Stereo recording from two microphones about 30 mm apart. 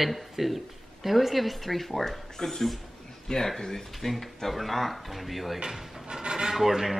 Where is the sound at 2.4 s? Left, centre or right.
Centre.